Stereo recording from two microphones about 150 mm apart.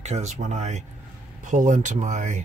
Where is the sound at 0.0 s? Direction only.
50° right (ahead or behind).